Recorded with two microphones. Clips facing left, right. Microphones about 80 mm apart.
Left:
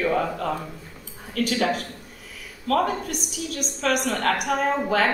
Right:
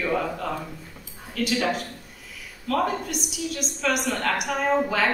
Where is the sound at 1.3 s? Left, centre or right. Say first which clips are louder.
Left 1 dB; left.